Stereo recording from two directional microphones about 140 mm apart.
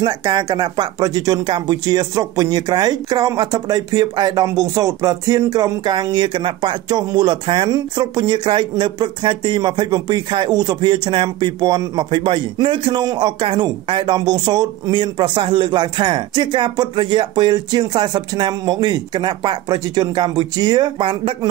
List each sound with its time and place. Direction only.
0.0 s speech: 35° right (ahead or behind)